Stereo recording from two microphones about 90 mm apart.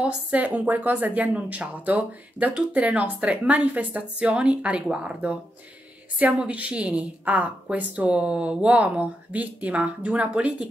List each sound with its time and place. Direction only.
0.0 s a woman's voice: 15° right (ahead or behind)
6.4 s a woman's voice: 15° right (ahead or behind)